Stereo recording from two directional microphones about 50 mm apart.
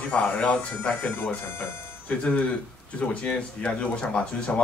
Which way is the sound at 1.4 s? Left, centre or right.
Left.